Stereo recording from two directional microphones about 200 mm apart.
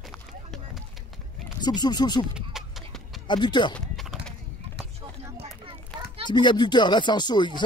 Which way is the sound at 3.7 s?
Centre (ahead or behind).